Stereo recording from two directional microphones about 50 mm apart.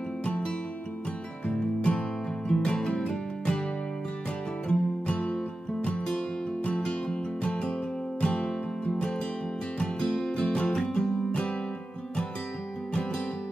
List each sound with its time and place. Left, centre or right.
0.2 s music: left
1.5 s music: left
4.6 s music: left